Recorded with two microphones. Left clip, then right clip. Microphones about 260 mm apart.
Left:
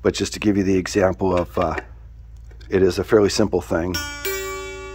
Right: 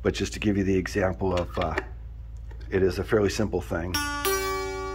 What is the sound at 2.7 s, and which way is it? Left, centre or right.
Speech, left.